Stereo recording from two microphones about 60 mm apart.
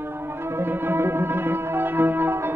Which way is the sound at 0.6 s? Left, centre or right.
Right.